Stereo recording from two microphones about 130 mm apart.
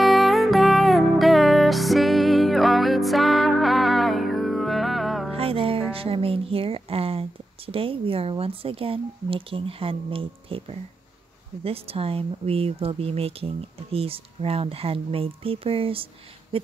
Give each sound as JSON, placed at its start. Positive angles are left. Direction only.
{"t": 0.0, "sound": "music", "side_deg": 0}
{"t": 5.3, "sound": "music", "side_deg": -45}
{"t": 11.6, "sound": "speech", "side_deg": -50}
{"t": 16.5, "sound": "a sound", "side_deg": -45}